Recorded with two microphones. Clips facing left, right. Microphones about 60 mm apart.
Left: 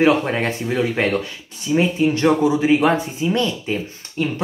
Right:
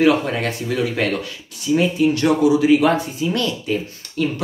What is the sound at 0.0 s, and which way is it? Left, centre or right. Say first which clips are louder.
Speech: even; left.